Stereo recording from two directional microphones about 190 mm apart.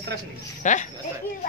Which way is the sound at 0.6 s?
40° left (ahead or behind).